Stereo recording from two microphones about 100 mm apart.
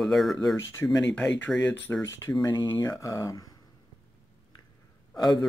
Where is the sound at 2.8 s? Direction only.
35° left (ahead or behind).